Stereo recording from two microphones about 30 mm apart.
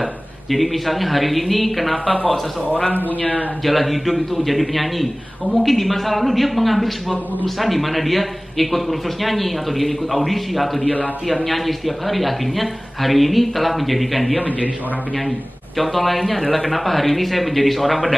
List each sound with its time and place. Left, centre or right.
0.5 s a man's voice: centre
3.2 s speech: left
3.6 s a man's voice: centre
10.8 s speech: left
11.4 s a man's voice: centre
15.8 s a man's voice: centre